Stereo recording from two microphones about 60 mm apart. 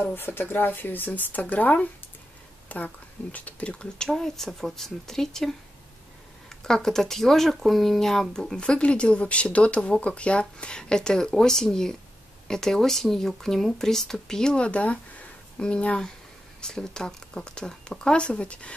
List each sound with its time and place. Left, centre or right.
0.0 s speech: left; by 5.5 s centre
6.6 s speech: centre